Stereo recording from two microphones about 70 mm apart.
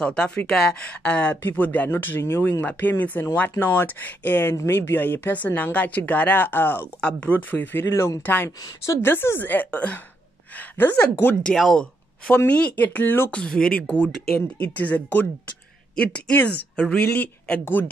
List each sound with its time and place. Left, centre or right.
0.0 s speech: centre; by 6.9 s left
7.0 s speech: centre
10.8 s speech: left
11.5 s a woman's voice: centre; by 13.3 s left
13.3 s speech: centre